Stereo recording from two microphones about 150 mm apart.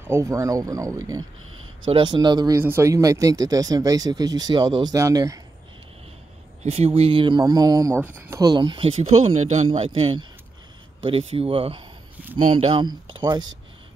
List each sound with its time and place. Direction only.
0.1 s speech: 20° right (ahead or behind)
1.9 s speech: 35° right (ahead or behind)
6.6 s speech: 40° right (ahead or behind)
9.7 s speech: 40° right (ahead or behind)